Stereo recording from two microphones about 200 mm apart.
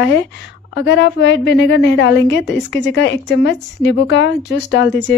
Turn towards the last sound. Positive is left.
turn(degrees=60)  # may be behind; listen again after turning